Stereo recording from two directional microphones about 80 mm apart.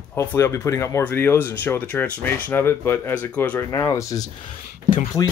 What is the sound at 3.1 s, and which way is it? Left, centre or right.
Speech, centre.